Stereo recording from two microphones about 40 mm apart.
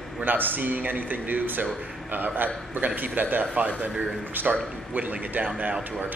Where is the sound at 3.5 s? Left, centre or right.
Right.